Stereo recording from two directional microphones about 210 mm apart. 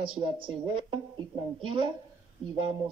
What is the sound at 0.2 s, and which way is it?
Speech, 25° right (ahead or behind).